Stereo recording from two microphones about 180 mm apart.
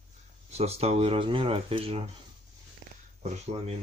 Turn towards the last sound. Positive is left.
turn(degrees=-40)  # may be behind; listen again after turning